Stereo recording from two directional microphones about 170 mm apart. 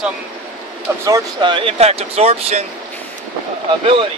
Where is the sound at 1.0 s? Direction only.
25° right (ahead or behind).